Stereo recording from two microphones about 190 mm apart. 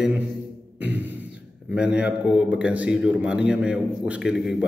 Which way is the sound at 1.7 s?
5° right (ahead or behind).